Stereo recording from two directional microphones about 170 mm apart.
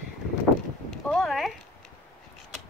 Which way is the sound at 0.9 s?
Centre (ahead or behind).